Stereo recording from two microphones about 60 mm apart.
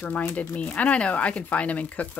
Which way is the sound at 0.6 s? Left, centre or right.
Left.